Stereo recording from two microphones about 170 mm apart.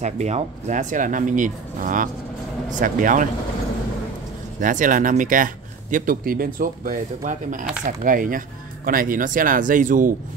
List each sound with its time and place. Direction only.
0.0 s speech: 45° right (ahead or behind)
4.6 s speech: 50° right (ahead or behind)